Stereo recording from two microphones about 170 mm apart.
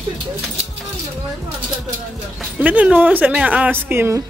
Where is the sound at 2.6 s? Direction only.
10° right (ahead or behind).